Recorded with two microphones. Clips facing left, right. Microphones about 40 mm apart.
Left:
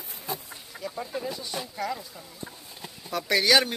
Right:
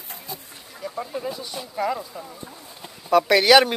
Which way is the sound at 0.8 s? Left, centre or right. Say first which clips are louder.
Right 4 dB; centre.